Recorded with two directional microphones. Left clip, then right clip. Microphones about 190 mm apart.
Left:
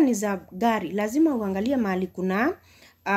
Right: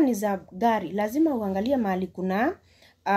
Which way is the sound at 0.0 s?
15° left (ahead or behind).